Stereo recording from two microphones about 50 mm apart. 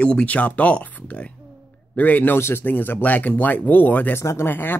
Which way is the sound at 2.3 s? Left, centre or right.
Left.